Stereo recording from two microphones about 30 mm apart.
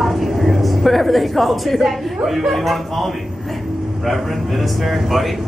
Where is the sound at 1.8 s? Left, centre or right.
Centre.